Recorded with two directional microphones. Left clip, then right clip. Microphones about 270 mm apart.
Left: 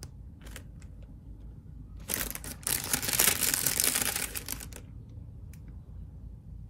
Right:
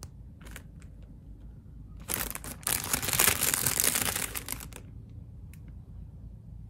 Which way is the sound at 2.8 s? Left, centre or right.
Centre.